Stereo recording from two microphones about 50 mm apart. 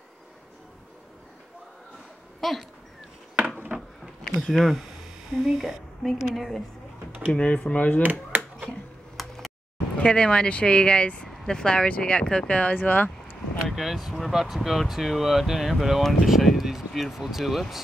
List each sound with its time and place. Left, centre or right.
2.4 s speech: centre
3.7 s a sound: right
4.4 s speech: centre
7.3 s speech: left
8.0 s speech: right
8.6 s a sound: centre
9.9 s speech: left
13.7 s speech: centre